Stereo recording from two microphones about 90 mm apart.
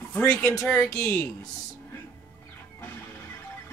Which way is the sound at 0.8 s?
35° left (ahead or behind).